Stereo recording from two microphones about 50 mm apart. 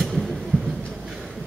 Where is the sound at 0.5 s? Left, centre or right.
Left.